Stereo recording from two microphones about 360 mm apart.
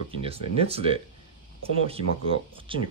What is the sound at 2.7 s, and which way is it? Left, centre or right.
Speech, centre.